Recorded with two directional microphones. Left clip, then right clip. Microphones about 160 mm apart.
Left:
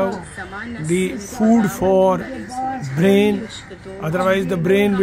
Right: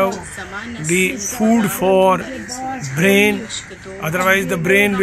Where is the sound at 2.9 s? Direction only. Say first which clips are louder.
Right 2 dB; 35° left (ahead or behind).